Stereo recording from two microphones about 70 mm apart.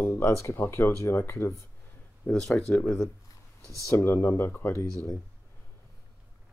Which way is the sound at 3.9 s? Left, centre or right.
Left.